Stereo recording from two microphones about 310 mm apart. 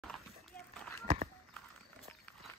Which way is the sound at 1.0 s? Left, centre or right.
Right.